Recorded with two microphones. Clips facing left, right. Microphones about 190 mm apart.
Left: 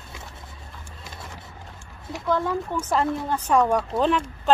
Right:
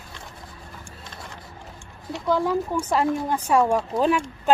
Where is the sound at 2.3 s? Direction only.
10° right (ahead or behind).